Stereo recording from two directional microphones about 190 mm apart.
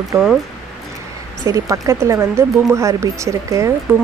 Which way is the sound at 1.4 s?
15° right (ahead or behind).